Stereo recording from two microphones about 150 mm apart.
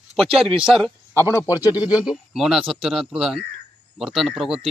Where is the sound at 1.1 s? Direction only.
20° left (ahead or behind).